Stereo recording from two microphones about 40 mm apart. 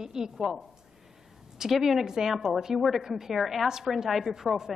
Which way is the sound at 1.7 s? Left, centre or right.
Centre.